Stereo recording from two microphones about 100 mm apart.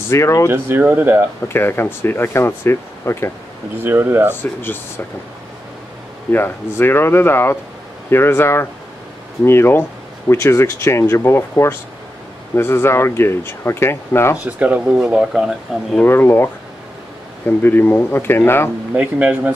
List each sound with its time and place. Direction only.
0.1 s speech: 30° left (ahead or behind)
0.5 s speech: 20° right (ahead or behind)
1.5 s speech: 25° left (ahead or behind)
3.7 s speech: 20° right (ahead or behind)
4.3 s speech: 20° left (ahead or behind)
6.3 s speech: 20° left (ahead or behind)
14.4 s speech: 15° right (ahead or behind)
16.1 s speech: 20° left (ahead or behind)
17.6 s speech: 20° left (ahead or behind)
18.9 s speech: 15° right (ahead or behind)